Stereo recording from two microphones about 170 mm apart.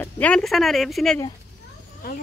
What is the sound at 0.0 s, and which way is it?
Speech, 5° left (ahead or behind).